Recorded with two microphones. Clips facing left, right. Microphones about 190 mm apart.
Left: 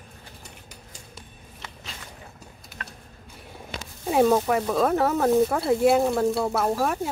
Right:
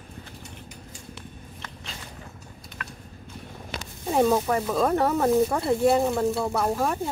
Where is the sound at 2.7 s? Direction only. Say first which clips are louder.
Right 1 dB; 5° left (ahead or behind).